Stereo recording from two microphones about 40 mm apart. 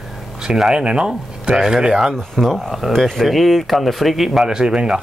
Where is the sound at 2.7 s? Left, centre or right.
Centre.